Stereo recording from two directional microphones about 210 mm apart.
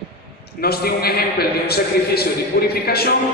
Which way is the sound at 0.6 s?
45° left (ahead or behind).